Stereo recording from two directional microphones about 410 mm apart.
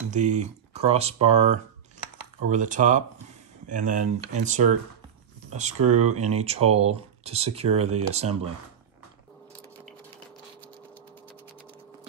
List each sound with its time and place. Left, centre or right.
0.1 s speech: centre